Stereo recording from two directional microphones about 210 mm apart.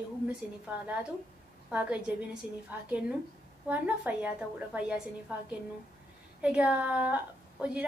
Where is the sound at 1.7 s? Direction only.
5° right (ahead or behind).